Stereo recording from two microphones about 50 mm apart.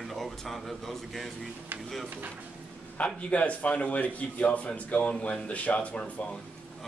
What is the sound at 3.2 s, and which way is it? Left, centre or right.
A man's voice, left.